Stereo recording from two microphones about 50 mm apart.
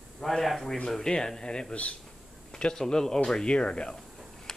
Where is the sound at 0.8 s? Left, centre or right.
Centre.